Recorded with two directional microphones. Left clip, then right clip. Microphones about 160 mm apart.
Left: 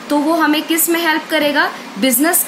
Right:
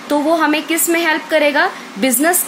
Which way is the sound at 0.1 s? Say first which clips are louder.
Even; 45° right (ahead or behind).